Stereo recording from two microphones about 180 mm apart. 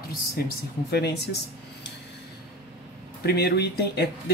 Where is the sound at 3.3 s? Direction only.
65° left (ahead or behind).